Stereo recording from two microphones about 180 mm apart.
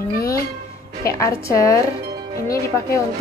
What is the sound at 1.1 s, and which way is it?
Speech, 15° left (ahead or behind).